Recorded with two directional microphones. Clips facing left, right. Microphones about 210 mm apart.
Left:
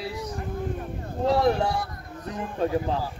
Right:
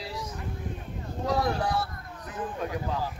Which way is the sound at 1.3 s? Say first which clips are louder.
Left 5 dB; 25° left (ahead or behind).